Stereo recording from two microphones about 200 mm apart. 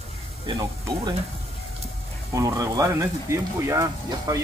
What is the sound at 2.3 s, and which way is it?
Speech, 15° right (ahead or behind).